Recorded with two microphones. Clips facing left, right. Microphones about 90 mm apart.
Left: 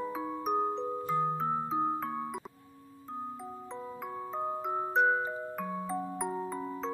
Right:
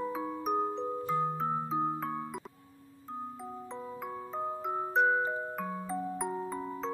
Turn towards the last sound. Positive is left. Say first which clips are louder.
# even
turn(degrees=0)  # may be behind; listen again after turning